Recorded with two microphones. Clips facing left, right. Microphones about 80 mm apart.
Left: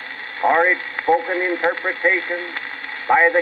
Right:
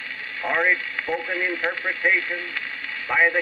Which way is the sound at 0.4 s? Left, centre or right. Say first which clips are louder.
Left 6 dB; left.